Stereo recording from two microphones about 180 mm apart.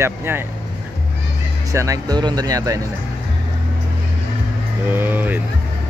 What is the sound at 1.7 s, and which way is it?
Speech, 15° right (ahead or behind).